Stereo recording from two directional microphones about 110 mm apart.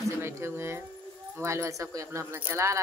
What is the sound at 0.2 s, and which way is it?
Speech, 25° right (ahead or behind).